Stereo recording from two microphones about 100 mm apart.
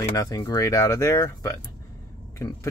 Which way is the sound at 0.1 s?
40° left (ahead or behind).